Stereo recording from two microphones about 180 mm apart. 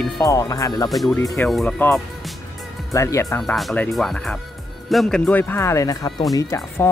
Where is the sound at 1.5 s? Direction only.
Centre (ahead or behind).